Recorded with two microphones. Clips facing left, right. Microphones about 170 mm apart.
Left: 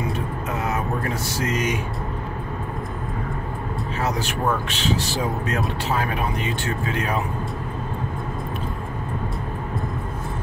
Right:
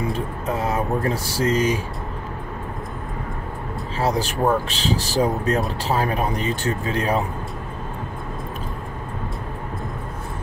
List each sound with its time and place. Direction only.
0.6 s speech: 30° right (ahead or behind)
4.0 s speech: 35° right (ahead or behind)